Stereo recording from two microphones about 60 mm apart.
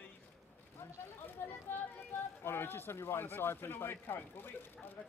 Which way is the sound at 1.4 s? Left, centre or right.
Left.